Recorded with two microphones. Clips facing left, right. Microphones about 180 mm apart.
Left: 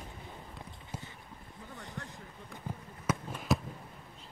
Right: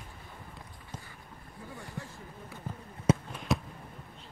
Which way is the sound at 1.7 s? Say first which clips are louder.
Right 1 dB; 20° left (ahead or behind).